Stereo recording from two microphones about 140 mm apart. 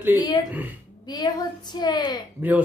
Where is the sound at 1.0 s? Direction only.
30° left (ahead or behind).